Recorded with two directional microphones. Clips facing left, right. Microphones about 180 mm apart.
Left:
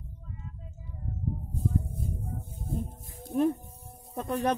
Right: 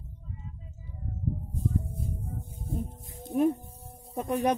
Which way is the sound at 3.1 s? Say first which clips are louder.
Right 1 dB; 15° right (ahead or behind).